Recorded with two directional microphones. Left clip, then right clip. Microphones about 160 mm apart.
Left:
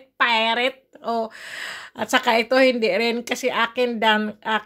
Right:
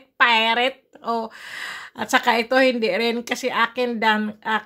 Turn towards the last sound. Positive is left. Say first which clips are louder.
# left 1 dB
turn(degrees=0)  # may be behind; listen again after turning